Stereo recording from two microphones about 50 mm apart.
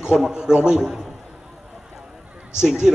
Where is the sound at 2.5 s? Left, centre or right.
Centre.